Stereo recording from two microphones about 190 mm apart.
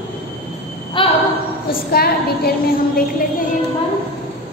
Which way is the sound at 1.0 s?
25° left (ahead or behind).